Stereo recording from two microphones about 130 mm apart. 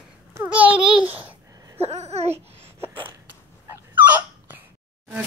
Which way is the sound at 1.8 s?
55° right (ahead or behind).